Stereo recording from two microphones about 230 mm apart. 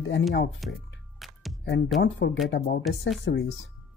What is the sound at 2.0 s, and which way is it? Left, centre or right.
Speech, left.